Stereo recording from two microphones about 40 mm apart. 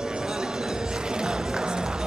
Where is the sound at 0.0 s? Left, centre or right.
Centre.